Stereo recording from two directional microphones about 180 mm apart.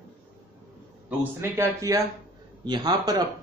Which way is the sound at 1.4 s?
15° right (ahead or behind).